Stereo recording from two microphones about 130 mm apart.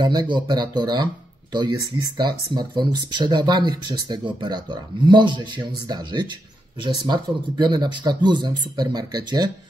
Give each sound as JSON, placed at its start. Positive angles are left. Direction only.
{"t": 0.0, "sound": "speech", "side_deg": -35}